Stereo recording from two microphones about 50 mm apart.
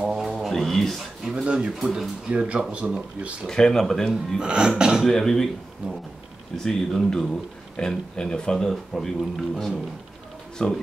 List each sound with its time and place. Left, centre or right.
0.2 s music: centre
0.5 s speech: centre
1.3 s speech: centre
3.4 s speech: centre
4.1 s speech: centre
5.0 s speech: centre
5.8 s speech: right
6.5 s speech: centre
10.6 s speech: centre